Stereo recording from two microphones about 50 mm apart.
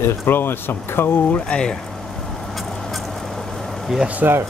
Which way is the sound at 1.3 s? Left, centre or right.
Centre.